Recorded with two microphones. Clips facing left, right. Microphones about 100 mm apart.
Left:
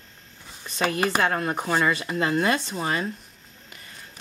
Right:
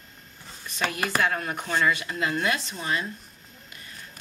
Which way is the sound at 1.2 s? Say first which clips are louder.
Left 3 dB; 35° left (ahead or behind).